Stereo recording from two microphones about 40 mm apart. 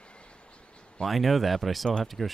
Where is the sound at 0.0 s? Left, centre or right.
Left.